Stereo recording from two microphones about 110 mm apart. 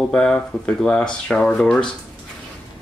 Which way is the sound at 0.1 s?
10° left (ahead or behind).